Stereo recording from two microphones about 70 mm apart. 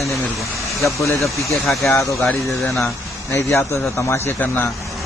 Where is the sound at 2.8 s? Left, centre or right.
Left.